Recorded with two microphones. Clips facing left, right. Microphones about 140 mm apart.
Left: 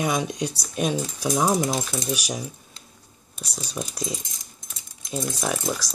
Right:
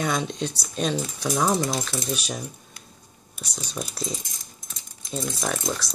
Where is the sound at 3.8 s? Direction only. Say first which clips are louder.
Left 1 dB; 10° left (ahead or behind).